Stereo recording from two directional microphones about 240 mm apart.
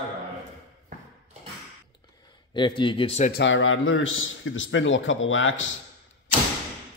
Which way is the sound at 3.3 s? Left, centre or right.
Left.